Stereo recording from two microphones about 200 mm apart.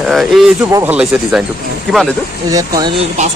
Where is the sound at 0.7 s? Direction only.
15° right (ahead or behind).